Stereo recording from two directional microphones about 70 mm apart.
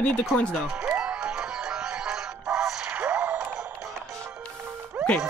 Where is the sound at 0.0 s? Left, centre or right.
Centre.